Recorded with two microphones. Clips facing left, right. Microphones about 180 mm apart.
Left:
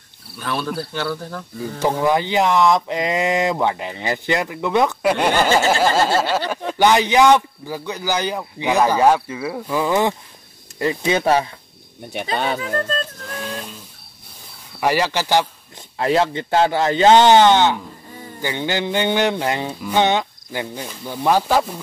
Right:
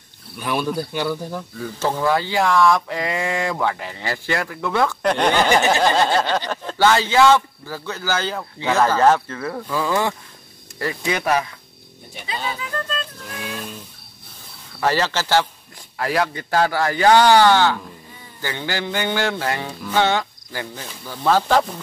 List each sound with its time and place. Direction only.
0.4 s speech: 15° right (ahead or behind)
1.6 s a sound: 15° left (ahead or behind)
5.0 s a man's voice: 10° left (ahead or behind)
5.5 s speech: 15° right (ahead or behind)
5.8 s a man's voice: 5° left (ahead or behind)
9.7 s a sound: 20° left (ahead or behind)
12.5 s speech: 45° left (ahead or behind)
14.8 s a man's voice: 15° left (ahead or behind)
16.0 s a sound: 25° left (ahead or behind)